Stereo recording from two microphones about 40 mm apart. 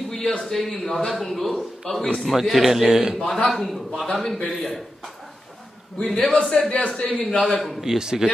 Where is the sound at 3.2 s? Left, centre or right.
Left.